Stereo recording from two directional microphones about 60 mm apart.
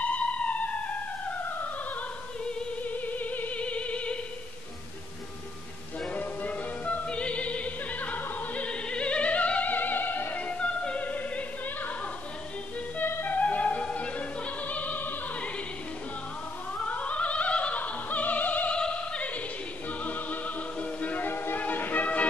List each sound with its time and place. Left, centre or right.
0.0 s theremin: left
1.5 s opera: left
2.8 s music: left
6.1 s music: left
10.4 s opera: centre
12.9 s music: left
13.4 s opera: left
16.8 s opera: left
19.9 s music: left